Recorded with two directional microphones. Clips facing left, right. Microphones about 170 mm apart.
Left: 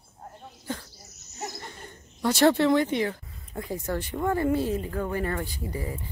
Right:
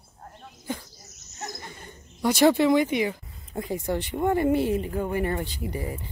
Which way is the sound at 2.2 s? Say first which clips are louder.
Right 1 dB; 10° right (ahead or behind).